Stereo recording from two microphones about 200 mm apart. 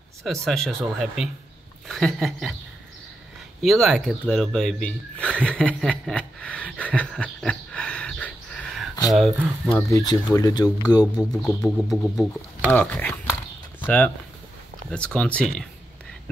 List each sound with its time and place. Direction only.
0.2 s speech: centre (ahead or behind)
3.6 s speech: centre (ahead or behind)
9.8 s speech: 15° left (ahead or behind)
11.4 s speech: centre (ahead or behind)